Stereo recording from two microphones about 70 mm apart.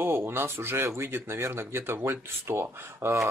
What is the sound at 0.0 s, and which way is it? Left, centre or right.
Speech, right.